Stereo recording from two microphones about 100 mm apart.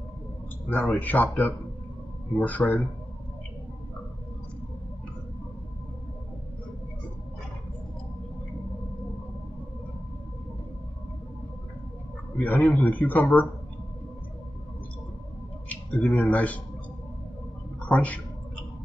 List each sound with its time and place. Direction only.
0.7 s a man's voice: 15° left (ahead or behind)
12.4 s a man's voice: 15° left (ahead or behind)
15.7 s speech: 15° left (ahead or behind)
17.7 s a woman's voice: 15° left (ahead or behind)